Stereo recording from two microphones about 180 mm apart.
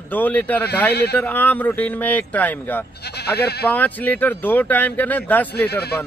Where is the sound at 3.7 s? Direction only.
10° left (ahead or behind).